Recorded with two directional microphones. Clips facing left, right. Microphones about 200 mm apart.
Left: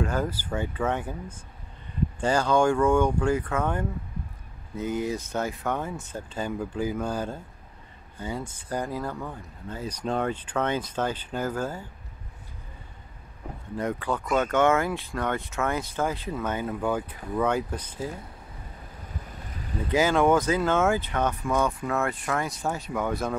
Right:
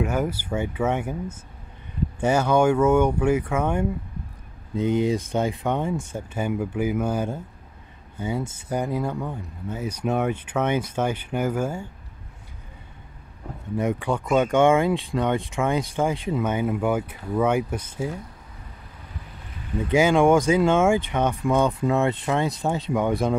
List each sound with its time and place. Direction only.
0.0 s speech: 10° right (ahead or behind)
0.9 s speech: 20° right (ahead or behind)
2.3 s speech: 10° right (ahead or behind)
4.7 s speech: 25° right (ahead or behind); by 7.3 s 10° right (ahead or behind)
8.3 s speech: 25° right (ahead or behind)
13.7 s speech: 10° right (ahead or behind)
19.9 s speech: 10° right (ahead or behind)